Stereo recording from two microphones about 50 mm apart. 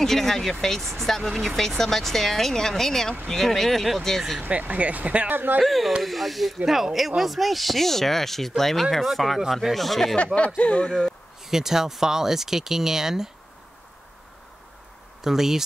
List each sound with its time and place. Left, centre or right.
0.0 s speech: centre
4.4 s speech: right
5.3 s speech: right
5.6 s speech: centre
10.1 s speech: left
11.4 s speech: centre
15.2 s speech: centre